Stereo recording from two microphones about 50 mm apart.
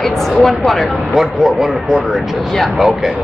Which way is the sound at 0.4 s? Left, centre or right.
Centre.